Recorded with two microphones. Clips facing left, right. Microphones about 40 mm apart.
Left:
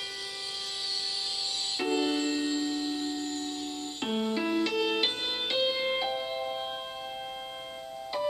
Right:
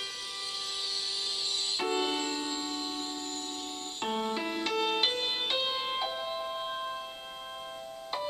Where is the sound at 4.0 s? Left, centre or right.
Centre.